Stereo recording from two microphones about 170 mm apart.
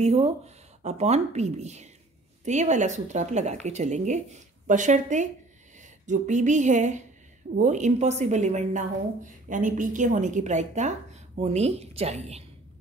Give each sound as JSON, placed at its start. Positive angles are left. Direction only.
{"t": 0.0, "sound": "a woman's voice", "side_deg": -40}